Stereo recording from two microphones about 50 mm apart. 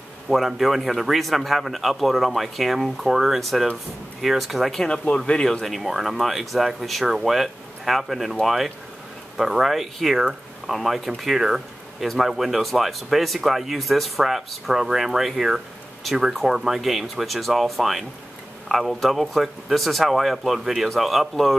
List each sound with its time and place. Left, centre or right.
0.3 s speech: centre
5.0 s speech: left
5.6 s speech: centre